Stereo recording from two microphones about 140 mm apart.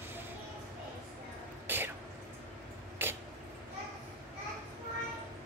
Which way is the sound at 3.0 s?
15° right (ahead or behind).